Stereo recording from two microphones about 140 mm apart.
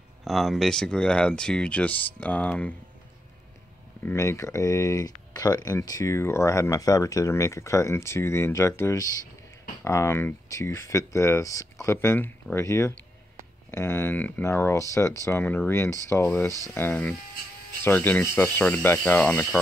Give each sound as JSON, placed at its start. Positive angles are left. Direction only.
{"t": 0.2, "sound": "speech", "side_deg": 0}
{"t": 4.0, "sound": "speech", "side_deg": 20}